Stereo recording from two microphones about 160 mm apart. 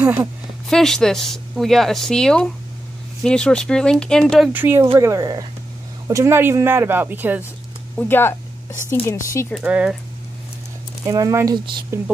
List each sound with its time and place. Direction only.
0.0 s speech: 15° right (ahead or behind)
0.7 s a woman's voice: 5° left (ahead or behind)
4.5 s speech: 10° right (ahead or behind)
8.0 s speech: 15° left (ahead or behind)
9.6 s speech: 5° right (ahead or behind)
11.1 s speech: 20° right (ahead or behind)